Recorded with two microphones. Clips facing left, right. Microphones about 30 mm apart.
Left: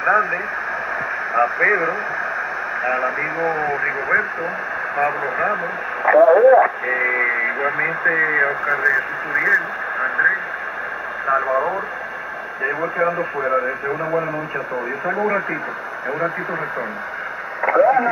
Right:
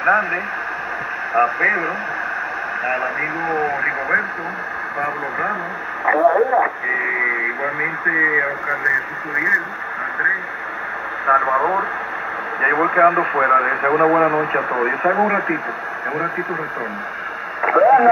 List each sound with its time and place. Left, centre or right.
0.0 s speech: centre
11.2 s speech: centre
12.6 s speech: right
15.1 s speech: centre
17.6 s speech: centre